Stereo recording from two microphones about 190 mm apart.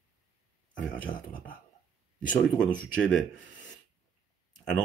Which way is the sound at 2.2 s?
5° left (ahead or behind).